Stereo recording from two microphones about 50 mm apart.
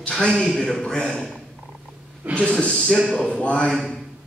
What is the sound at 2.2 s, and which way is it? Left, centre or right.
Speech, right.